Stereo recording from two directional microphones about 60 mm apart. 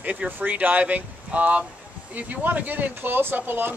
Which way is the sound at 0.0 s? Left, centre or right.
Right.